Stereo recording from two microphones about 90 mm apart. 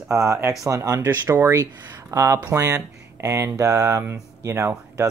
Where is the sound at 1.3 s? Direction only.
25° right (ahead or behind).